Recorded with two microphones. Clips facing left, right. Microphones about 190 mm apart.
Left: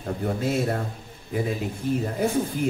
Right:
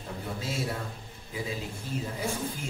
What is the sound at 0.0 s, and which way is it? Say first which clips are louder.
Speech: left 10 dB; 55° left (ahead or behind).